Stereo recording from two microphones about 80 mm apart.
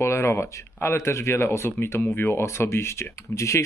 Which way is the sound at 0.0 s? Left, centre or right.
Left.